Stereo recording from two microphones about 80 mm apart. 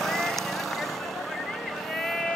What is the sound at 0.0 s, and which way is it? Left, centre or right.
Vehicle, centre.